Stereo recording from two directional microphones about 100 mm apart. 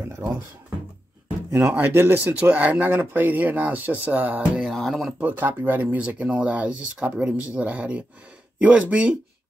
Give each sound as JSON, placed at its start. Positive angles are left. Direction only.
{"t": 0.0, "sound": "speech", "side_deg": -25}
{"t": 1.5, "sound": "speech", "side_deg": -20}
{"t": 4.6, "sound": "speech", "side_deg": 0}
{"t": 5.2, "sound": "speech", "side_deg": -20}